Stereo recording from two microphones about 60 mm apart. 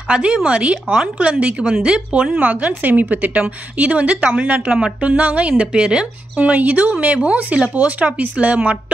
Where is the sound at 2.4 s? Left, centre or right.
Right.